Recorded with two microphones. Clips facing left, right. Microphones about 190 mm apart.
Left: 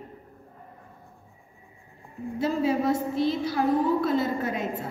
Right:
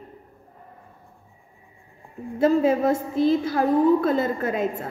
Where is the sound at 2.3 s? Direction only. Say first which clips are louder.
Right 6 dB; 50° right (ahead or behind).